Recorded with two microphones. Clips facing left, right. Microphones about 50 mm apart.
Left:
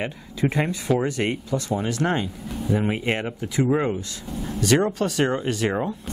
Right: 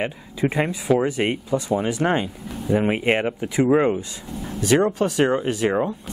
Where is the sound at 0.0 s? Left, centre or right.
Centre.